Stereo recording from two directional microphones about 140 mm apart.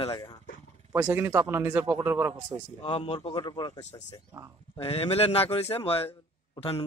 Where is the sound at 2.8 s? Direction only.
40° left (ahead or behind).